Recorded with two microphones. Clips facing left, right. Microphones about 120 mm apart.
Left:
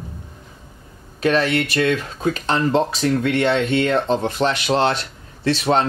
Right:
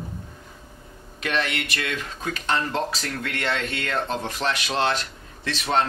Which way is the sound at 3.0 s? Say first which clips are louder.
Left 11 dB; 15° left (ahead or behind).